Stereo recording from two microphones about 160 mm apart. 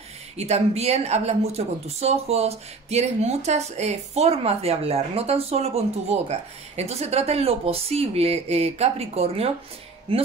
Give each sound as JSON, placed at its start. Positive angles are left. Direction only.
{"t": 0.4, "sound": "a woman's voice", "side_deg": -40}